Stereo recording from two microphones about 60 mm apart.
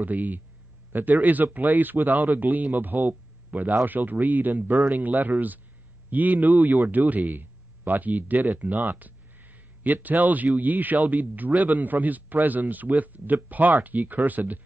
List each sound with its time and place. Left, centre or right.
0.0 s a man's voice: right